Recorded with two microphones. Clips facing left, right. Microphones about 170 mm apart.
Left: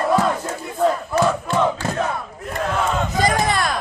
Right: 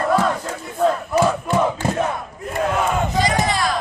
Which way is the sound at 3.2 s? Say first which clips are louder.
Left 1 dB; 55° left (ahead or behind).